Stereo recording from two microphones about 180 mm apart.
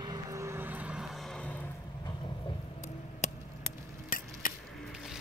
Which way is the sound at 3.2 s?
40° left (ahead or behind).